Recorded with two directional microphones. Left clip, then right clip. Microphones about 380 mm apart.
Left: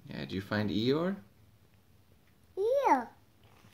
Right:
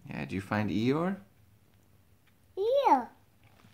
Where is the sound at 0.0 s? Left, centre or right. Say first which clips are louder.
Right 2 dB; centre.